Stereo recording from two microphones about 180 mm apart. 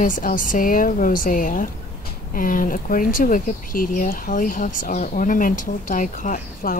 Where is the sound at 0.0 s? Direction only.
50° left (ahead or behind).